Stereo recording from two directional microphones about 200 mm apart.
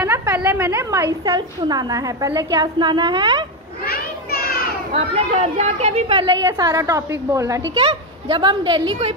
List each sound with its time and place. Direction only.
0.0 s a woman's voice: 10° right (ahead or behind)
3.8 s children playing: 50° left (ahead or behind)
4.9 s speech: 30° right (ahead or behind)
6.4 s a woman's voice: 15° right (ahead or behind)
7.7 s a woman's voice: 25° right (ahead or behind)